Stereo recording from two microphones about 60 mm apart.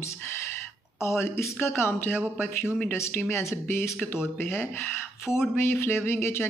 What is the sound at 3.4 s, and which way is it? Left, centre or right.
Speech, left.